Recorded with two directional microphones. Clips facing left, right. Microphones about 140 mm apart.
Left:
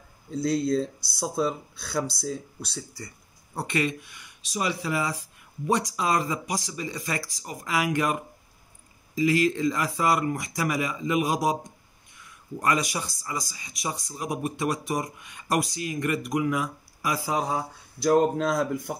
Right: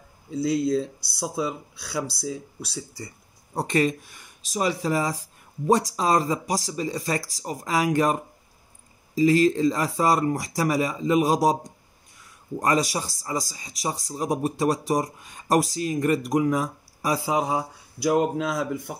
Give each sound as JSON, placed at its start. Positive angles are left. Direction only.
{"t": 0.3, "sound": "speech", "side_deg": -5}
{"t": 3.5, "sound": "speech", "side_deg": -40}
{"t": 17.2, "sound": "speech", "side_deg": -20}